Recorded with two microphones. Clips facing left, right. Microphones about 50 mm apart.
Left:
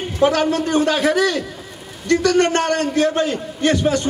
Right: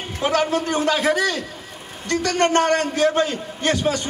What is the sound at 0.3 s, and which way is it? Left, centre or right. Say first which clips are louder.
Speech: left 2 dB; left.